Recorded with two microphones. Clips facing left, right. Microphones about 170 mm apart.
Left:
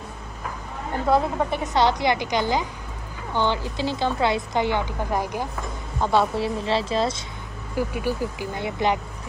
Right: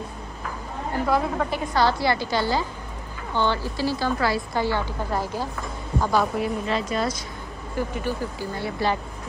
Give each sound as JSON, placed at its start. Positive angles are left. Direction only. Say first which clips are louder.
{"t": 1.0, "sound": "a woman's voice", "louder": "left 3 dB", "side_deg": 20}
{"t": 5.9, "sound": "a woman's voice", "louder": "left 1 dB", "side_deg": 25}
{"t": 7.7, "sound": "a woman's voice", "louder": "left 2 dB", "side_deg": 10}